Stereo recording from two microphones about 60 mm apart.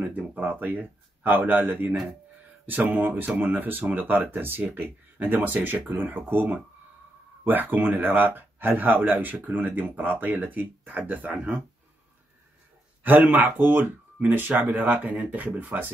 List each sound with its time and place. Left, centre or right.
0.3 s speech: right
13.0 s speech: right